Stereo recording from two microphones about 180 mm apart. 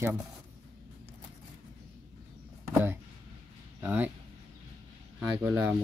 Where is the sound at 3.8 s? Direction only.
10° right (ahead or behind).